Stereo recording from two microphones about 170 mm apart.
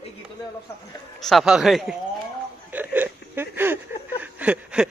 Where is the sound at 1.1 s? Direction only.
Centre (ahead or behind).